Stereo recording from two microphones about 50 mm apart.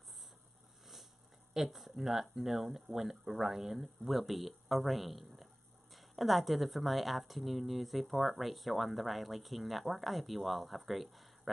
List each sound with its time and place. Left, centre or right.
1.5 s speech: centre